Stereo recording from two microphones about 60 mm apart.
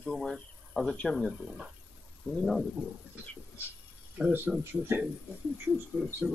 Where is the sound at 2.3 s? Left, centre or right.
Centre.